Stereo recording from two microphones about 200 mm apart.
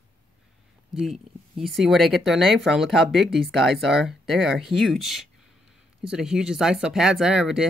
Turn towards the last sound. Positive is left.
turn(degrees=-5)  # may be behind; listen again after turning